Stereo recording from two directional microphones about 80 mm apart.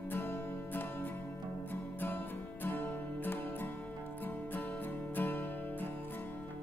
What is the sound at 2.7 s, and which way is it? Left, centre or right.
Music, left.